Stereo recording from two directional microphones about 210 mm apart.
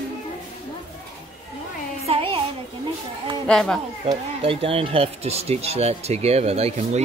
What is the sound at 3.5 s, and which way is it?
Speech, 5° left (ahead or behind).